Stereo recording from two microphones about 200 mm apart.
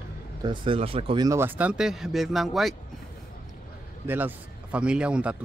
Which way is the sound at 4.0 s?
10° right (ahead or behind).